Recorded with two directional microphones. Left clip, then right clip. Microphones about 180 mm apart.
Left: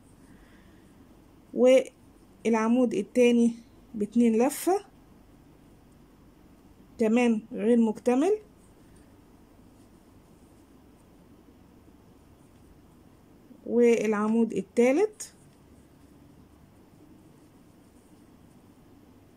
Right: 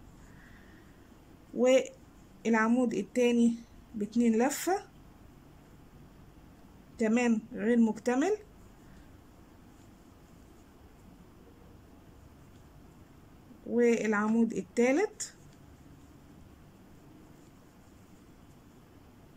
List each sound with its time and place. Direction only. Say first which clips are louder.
1.6 s speech: left 5 dB; 15° left (ahead or behind)
7.0 s speech: left 4 dB; 15° left (ahead or behind)
13.7 s speech: left 5 dB; 15° left (ahead or behind)